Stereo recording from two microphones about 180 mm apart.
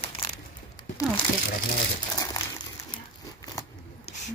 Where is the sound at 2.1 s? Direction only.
20° left (ahead or behind).